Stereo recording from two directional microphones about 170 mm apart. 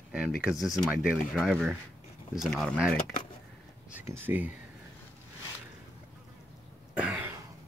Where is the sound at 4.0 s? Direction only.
15° right (ahead or behind).